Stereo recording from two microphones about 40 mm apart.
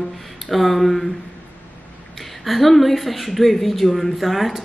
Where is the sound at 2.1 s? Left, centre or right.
Centre.